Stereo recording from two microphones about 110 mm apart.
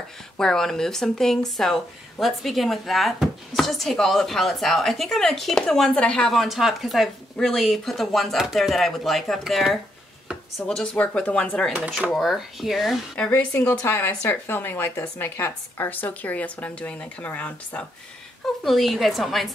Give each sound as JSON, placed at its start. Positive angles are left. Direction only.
{"t": 0.4, "sound": "speech", "side_deg": 5}
{"t": 12.1, "sound": "speech", "side_deg": 0}
{"t": 13.1, "sound": "speech", "side_deg": 15}
{"t": 18.4, "sound": "speech", "side_deg": 0}